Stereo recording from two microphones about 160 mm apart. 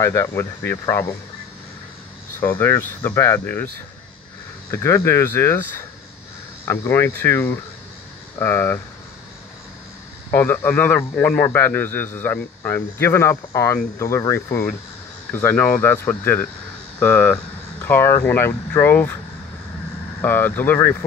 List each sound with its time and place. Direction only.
0.0 s speech: 20° left (ahead or behind)
2.4 s a man's voice: 20° left (ahead or behind)
4.6 s a man's voice: 15° left (ahead or behind)
10.3 s a man's voice: 15° left (ahead or behind)
20.2 s a man's voice: 15° left (ahead or behind)